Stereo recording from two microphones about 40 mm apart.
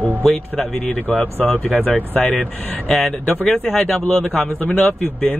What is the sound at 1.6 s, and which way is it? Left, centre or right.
Speech, left.